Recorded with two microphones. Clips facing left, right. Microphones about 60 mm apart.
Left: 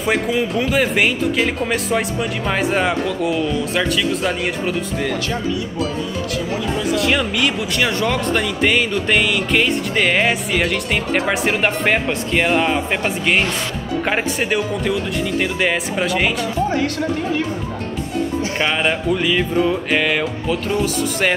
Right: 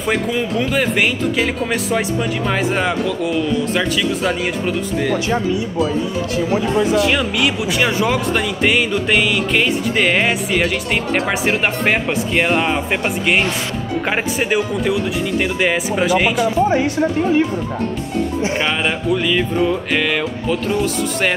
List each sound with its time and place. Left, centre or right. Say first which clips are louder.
0.0 s speech: even; centre
7.0 s speech: right 2 dB; centre
16.4 s speech: right 4 dB; centre
18.6 s speech: even; centre